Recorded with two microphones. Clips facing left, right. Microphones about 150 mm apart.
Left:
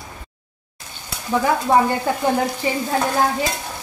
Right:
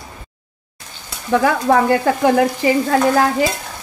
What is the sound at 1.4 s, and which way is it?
Speech, 90° right.